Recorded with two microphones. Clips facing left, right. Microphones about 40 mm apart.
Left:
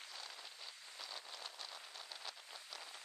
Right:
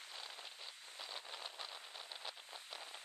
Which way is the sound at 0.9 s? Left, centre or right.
Right.